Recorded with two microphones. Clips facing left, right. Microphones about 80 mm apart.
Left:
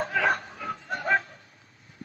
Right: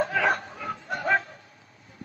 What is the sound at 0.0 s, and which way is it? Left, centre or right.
Snicker, right.